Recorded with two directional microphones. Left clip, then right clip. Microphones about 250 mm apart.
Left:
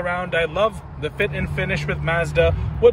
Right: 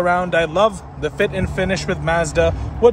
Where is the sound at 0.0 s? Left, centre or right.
Centre.